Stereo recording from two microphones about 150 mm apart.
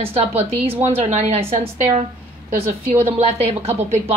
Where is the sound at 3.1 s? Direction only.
45° right (ahead or behind).